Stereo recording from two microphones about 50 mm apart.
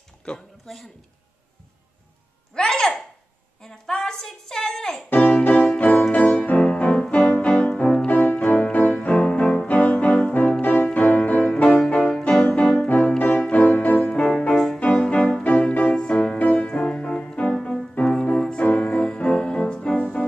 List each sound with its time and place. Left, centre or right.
0.3 s speech: centre
2.5 s a sound: centre
5.1 s music: left
6.7 s music: left
8.1 s music: left
10.6 s music: left; by 12.3 s centre
12.3 s music: left
14.0 s music: centre
14.8 s music: left
15.4 s music: left
16.6 s music: centre